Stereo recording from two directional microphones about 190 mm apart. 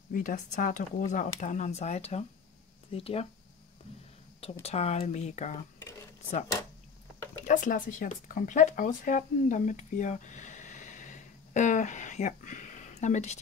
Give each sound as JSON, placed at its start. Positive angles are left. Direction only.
{"t": 0.1, "sound": "speech", "side_deg": 45}
{"t": 4.6, "sound": "speech", "side_deg": 35}
{"t": 7.4, "sound": "speech", "side_deg": 45}